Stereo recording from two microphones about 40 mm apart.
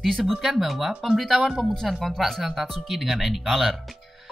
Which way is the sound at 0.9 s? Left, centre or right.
Centre.